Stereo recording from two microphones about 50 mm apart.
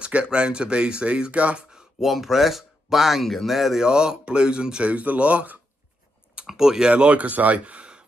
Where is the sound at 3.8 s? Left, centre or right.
Centre.